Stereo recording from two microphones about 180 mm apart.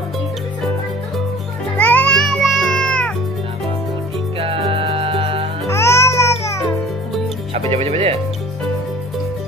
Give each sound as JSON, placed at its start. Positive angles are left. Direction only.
{"t": 1.8, "sound": "music", "side_deg": 10}
{"t": 4.4, "sound": "music", "side_deg": -35}
{"t": 5.7, "sound": "music", "side_deg": 15}
{"t": 7.5, "sound": "music", "side_deg": -35}